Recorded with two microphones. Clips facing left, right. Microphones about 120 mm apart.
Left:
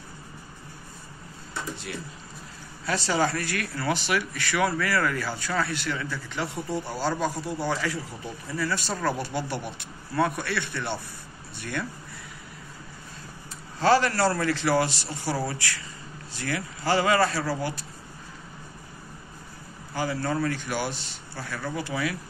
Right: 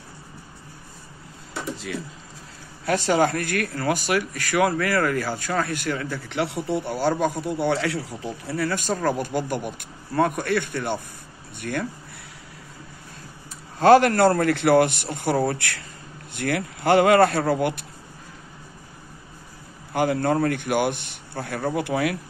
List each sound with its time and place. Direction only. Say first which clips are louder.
2.8 s speech: right 5 dB; 50° right (ahead or behind); by 6.8 s 70° right (ahead or behind)
6.9 s a man's voice: right 5 dB; 55° right (ahead or behind)
13.7 s a man's voice: right 7 dB; 55° right (ahead or behind)
19.9 s a man's voice: right 7 dB; 60° right (ahead or behind)